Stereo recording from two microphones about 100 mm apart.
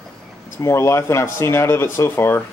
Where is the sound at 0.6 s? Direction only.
30° left (ahead or behind).